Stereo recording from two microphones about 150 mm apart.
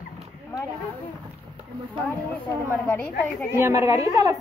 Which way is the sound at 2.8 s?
10° left (ahead or behind).